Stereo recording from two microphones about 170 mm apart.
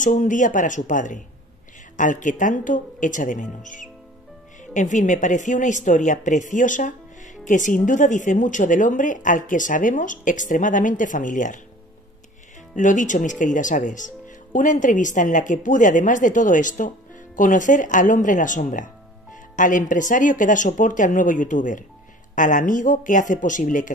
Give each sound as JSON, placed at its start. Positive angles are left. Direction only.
{"t": 0.0, "sound": "speech", "side_deg": 50}
{"t": 12.7, "sound": "speech", "side_deg": 50}